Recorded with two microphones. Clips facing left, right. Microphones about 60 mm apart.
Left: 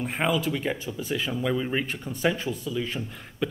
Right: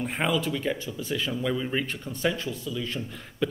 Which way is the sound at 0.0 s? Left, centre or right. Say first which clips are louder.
Left 1 dB; centre.